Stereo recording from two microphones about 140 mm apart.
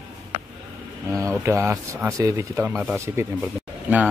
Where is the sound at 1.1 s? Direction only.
20° right (ahead or behind).